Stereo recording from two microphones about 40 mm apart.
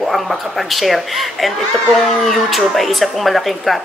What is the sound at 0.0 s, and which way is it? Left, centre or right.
A woman's voice, centre.